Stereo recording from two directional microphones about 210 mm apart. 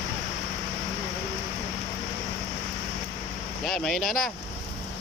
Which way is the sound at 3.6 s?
Centre (ahead or behind).